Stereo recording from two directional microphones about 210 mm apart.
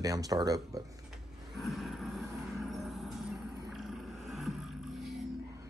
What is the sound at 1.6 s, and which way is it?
Vehicle, centre (ahead or behind).